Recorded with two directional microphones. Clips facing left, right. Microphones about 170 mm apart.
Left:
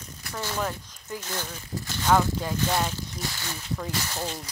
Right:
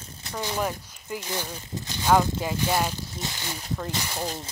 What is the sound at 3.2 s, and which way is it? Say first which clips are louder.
Speech: right 1 dB; 20° right (ahead or behind).